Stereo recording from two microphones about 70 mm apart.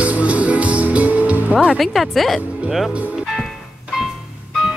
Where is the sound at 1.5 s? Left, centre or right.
Centre.